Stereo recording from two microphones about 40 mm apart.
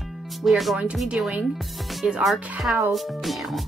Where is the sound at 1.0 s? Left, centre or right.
Right.